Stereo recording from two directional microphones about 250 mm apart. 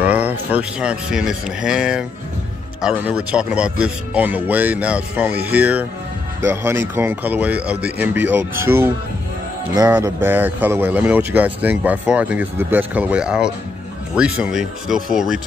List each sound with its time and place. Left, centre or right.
0.0 s speech: centre